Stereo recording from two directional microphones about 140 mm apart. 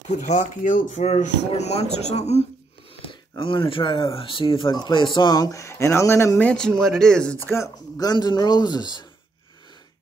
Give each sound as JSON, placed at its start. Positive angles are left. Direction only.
{"t": 0.2, "sound": "speech", "side_deg": 65}
{"t": 3.3, "sound": "speech", "side_deg": 35}
{"t": 7.4, "sound": "speech", "side_deg": 20}